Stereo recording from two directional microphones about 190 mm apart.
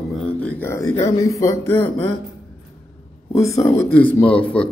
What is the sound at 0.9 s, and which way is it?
Speech, 15° left (ahead or behind).